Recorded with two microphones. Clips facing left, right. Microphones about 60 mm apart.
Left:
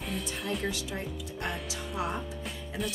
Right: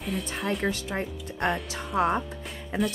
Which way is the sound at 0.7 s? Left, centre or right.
Right.